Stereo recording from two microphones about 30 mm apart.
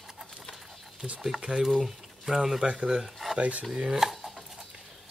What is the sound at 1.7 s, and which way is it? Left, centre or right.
Speech, centre.